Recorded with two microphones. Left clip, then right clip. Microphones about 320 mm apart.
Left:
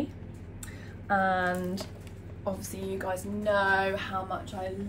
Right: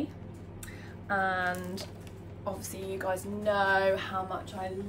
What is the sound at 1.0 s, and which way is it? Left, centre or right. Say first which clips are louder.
Speech: left 3 dB; centre.